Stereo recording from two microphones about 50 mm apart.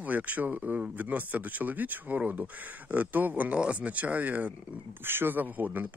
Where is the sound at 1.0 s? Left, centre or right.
Right.